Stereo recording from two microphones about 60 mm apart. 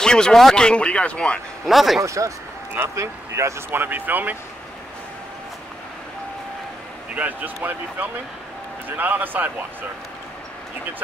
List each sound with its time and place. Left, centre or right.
0.0 s speech: centre
1.7 s a man's voice: centre
2.0 s speech: right
3.7 s a man's voice: right
7.2 s a man's voice: right